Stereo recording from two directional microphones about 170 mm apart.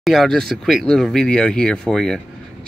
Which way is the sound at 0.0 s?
Centre (ahead or behind).